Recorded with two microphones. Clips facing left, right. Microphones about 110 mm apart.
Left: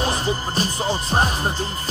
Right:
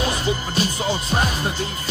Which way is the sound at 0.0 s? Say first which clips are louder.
Even; 35° left (ahead or behind).